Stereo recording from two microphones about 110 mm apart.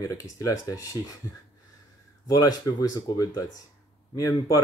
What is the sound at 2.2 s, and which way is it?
Speech, 35° left (ahead or behind).